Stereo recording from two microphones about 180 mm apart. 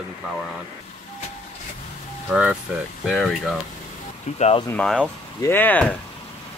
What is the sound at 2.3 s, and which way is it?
Speech, 5° right (ahead or behind).